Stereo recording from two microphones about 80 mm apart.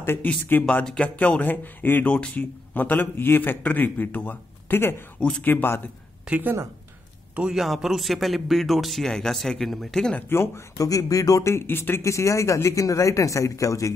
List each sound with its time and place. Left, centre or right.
0.0 s speech: left
6.2 s a woman's voice: centre
7.3 s speech: centre
10.3 s speech: left
10.8 s speech: left
12.0 s speech: left